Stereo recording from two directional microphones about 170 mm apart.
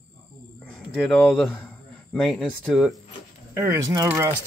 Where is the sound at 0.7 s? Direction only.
5° left (ahead or behind).